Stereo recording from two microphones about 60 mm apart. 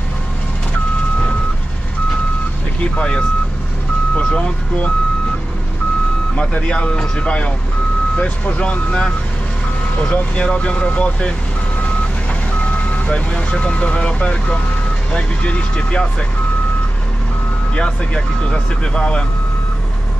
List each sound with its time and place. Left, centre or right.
2.8 s speech: centre
6.3 s speech: centre
10.1 s speech: centre
12.7 s speech: left
17.7 s speech: centre